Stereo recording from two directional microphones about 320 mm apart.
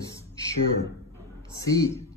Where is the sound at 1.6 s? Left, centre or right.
Centre.